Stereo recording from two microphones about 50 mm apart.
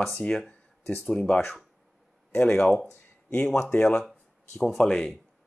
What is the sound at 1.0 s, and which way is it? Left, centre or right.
Speech, centre.